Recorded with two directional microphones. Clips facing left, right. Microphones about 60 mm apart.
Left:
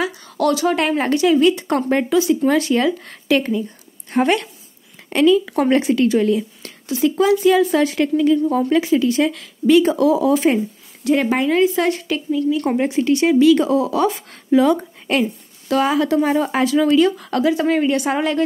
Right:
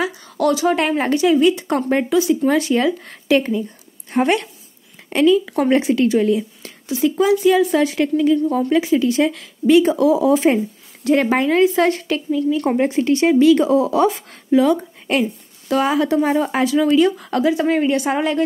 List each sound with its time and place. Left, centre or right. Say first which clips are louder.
0.2 s speech: even; centre
5.1 s speech: even; centre
5.4 s speech: even; centre
5.7 s speech: even; right
8.4 s speech: left 1 dB; centre
8.7 s speech: right 1 dB; centre
11.1 s speech: right 1 dB; right
12.5 s speech: right 1 dB; right
14.5 s speech: even; centre
15.7 s speech: even; centre